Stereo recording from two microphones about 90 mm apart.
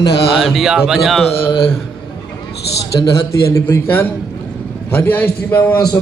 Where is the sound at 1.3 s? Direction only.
90° left.